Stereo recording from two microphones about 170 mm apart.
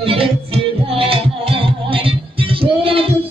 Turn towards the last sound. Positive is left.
turn(degrees=-30)  # may be behind; listen again after turning